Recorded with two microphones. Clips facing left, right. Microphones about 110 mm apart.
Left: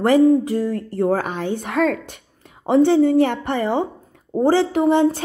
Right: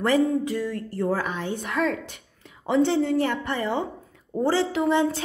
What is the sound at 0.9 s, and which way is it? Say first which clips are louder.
A woman's voice: left 5 dB; 60° left (ahead or behind).